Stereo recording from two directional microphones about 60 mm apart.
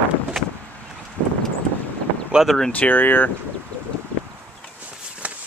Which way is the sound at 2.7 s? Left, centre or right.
Left.